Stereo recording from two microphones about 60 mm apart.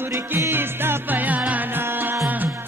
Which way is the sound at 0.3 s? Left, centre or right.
Right.